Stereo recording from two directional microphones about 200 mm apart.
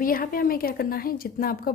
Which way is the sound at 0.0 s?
45° left (ahead or behind).